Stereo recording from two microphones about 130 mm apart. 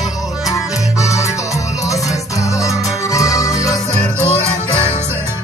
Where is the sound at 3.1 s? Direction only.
25° left (ahead or behind).